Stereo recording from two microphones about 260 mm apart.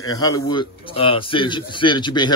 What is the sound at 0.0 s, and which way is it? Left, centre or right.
A man's voice, centre.